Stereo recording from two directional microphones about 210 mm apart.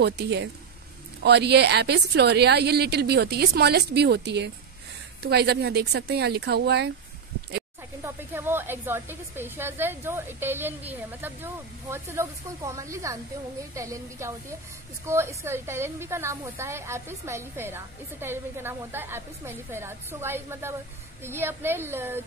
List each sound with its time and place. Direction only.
0.0 s a woman's voice: 55° right (ahead or behind)
8.0 s speech: 10° right (ahead or behind)